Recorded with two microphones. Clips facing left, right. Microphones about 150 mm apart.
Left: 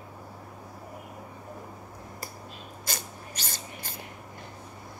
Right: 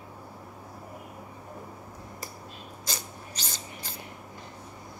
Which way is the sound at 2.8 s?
50° left (ahead or behind).